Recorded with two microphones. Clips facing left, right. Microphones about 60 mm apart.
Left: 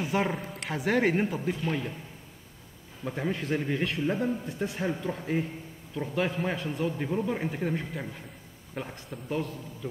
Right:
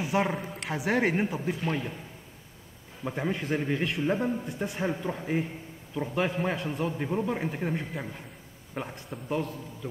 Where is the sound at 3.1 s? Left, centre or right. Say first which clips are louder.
Even; centre.